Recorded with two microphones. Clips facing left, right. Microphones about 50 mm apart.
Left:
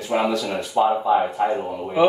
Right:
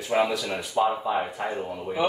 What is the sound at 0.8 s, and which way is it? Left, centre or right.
Speech, centre.